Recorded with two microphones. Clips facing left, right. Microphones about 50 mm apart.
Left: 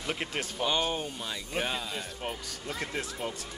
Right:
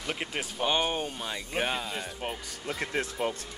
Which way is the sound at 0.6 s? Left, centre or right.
Right.